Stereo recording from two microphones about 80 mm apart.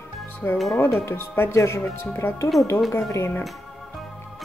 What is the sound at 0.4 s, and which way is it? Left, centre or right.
Speech, left.